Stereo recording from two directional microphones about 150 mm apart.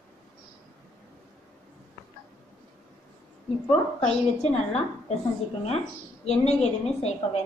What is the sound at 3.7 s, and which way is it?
A woman's voice, 40° left (ahead or behind).